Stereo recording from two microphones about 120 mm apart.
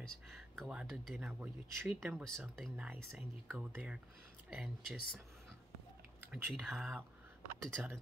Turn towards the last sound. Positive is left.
turn(degrees=-20)  # may be behind; listen again after turning